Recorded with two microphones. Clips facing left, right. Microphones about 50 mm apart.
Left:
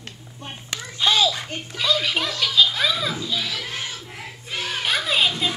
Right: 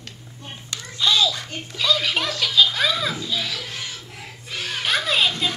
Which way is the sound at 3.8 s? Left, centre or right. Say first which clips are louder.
Left 2 dB; left.